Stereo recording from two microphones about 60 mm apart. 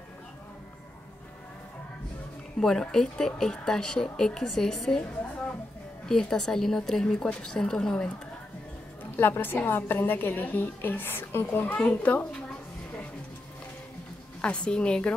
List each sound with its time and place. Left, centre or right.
2.6 s speech: centre
6.0 s speech: centre
9.1 s a woman's voice: left
14.4 s speech: centre